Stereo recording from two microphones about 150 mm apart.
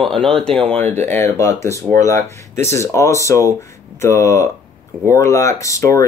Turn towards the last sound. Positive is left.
turn(degrees=20)  # may be behind; listen again after turning